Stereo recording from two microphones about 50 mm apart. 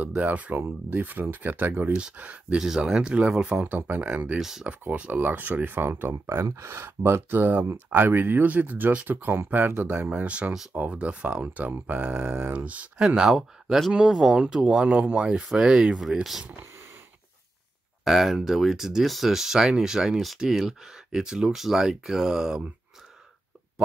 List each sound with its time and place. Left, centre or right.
0.0 s speech: right
2.5 s speech: centre
3.6 s speech: right
4.4 s speech: centre
4.9 s speech: right
5.2 s speech: right
7.3 s speech: right
10.0 s speech: right
12.1 s speech: right
13.0 s speech: centre
14.8 s speech: right; by 16.4 s centre
18.0 s speech: centre